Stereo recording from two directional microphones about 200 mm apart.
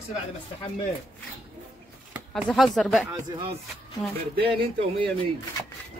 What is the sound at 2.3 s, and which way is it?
Speech, centre (ahead or behind).